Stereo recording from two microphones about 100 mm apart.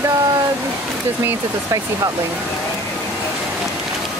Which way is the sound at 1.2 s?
35° right (ahead or behind).